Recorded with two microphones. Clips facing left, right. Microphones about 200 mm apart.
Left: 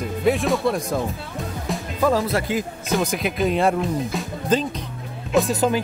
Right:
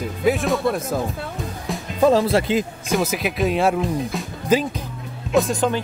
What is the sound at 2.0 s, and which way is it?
Speech, 25° right (ahead or behind).